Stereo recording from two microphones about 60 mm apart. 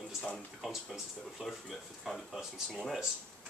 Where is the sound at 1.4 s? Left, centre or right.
Centre.